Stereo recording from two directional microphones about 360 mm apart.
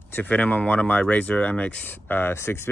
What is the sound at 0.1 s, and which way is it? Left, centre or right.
Speech, centre.